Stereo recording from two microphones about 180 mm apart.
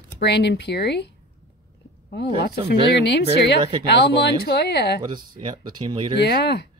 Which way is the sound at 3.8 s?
70° left (ahead or behind).